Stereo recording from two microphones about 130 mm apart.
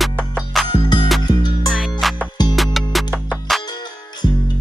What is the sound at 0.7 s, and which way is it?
Music, 35° left (ahead or behind).